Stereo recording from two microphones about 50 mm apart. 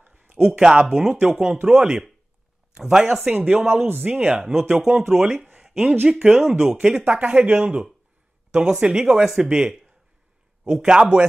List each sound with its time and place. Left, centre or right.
0.0 s a sound: right
0.4 s speech: centre
3.3 s speech: right
4.0 s speech: right
5.4 s a sound: centre
6.0 s speech: centre